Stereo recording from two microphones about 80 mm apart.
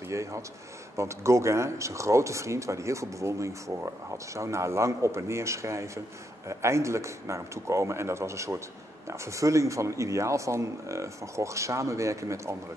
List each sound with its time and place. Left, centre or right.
0.1 s a man's voice: right